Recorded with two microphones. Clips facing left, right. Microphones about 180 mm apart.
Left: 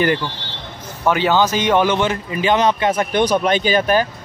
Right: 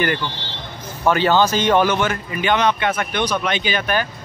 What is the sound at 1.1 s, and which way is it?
Speech, 15° left (ahead or behind).